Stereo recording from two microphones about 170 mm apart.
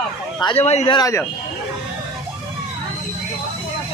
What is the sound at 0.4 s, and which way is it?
Speech, 30° left (ahead or behind).